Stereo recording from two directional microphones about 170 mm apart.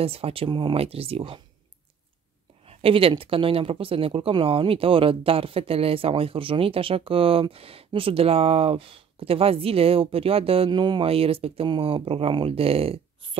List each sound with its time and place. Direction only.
0.0 s speech: 35° right (ahead or behind)
2.6 s speech: 35° right (ahead or behind)